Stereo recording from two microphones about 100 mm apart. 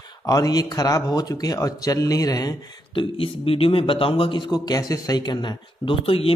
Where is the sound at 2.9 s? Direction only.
65° left (ahead or behind); by 5.9 s 50° left (ahead or behind).